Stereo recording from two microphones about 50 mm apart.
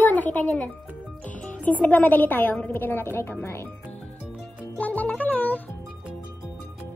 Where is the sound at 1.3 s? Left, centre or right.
Left.